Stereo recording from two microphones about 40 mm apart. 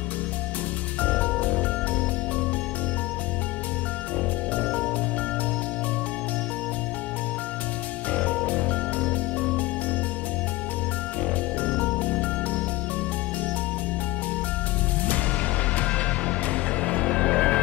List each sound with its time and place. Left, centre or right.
1.0 s music: left
8.1 s music: left
11.8 s music: left
15.7 s music: left